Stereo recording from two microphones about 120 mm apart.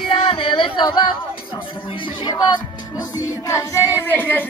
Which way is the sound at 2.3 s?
30° left (ahead or behind).